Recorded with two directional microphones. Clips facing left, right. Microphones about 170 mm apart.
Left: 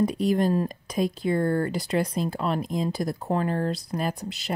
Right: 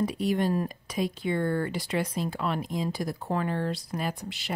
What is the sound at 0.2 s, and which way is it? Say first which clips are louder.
Speech: left 4 dB; 35° left (ahead or behind).